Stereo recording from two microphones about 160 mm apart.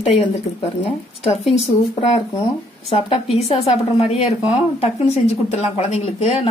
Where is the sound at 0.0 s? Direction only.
35° left (ahead or behind).